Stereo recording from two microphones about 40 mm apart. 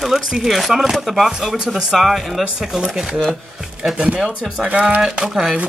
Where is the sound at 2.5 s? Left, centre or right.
Centre.